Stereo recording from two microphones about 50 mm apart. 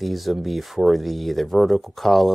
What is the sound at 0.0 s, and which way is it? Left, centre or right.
Speech, centre.